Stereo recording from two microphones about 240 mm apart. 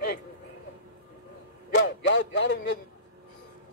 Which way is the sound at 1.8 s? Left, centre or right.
Left.